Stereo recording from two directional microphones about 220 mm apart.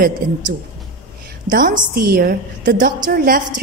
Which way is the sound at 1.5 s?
40° right (ahead or behind).